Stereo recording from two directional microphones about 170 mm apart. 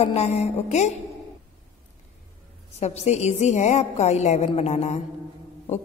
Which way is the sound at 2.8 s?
40° left (ahead or behind).